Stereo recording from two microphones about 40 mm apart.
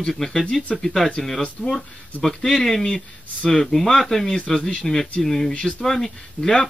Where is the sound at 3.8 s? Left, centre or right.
Centre.